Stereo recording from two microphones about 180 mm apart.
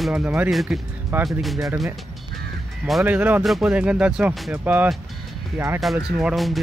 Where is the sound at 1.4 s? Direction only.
Centre (ahead or behind).